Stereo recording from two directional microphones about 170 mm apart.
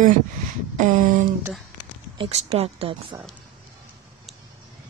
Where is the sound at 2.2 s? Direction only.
40° right (ahead or behind).